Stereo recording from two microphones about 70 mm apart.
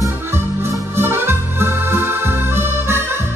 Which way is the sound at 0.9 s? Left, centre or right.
Right.